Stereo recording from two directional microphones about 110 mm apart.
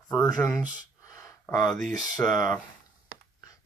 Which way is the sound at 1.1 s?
30° left (ahead or behind).